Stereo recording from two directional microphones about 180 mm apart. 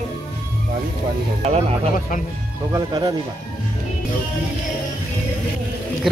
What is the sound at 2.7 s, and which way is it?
Speech, 25° right (ahead or behind).